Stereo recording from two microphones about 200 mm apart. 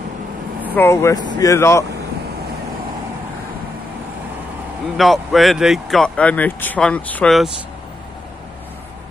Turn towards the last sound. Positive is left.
turn(degrees=0)  # may be behind; listen again after turning